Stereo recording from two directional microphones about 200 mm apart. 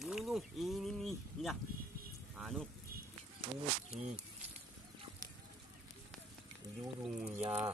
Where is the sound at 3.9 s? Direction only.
35° right (ahead or behind).